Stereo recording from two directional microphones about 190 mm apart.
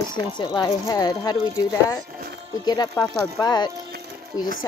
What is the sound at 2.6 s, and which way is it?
Speech, 20° left (ahead or behind).